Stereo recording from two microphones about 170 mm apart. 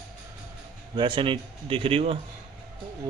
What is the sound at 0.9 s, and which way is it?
A man's voice, 30° right (ahead or behind).